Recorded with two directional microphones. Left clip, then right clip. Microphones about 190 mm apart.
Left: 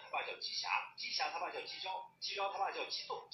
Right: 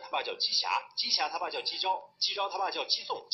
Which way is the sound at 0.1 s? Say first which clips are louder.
Right 10 dB; 40° right (ahead or behind).